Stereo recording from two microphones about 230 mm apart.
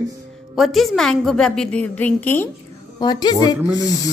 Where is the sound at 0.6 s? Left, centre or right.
Centre.